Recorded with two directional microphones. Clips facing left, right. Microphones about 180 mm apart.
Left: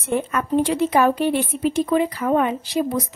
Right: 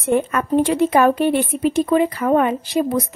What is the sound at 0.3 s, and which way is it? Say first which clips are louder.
Speech: right 3 dB; 55° right (ahead or behind).